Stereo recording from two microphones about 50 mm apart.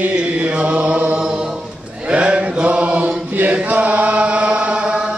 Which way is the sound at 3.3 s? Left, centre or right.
Right.